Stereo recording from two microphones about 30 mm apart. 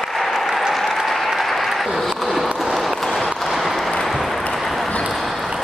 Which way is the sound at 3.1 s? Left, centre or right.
Centre.